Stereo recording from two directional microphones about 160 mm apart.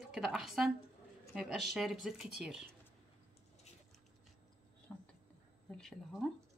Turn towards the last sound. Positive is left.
turn(degrees=0)  # may be behind; listen again after turning